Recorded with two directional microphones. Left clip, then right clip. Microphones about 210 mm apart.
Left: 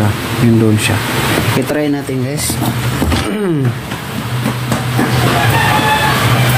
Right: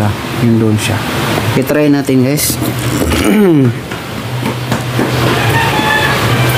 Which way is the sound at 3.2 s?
30° right (ahead or behind).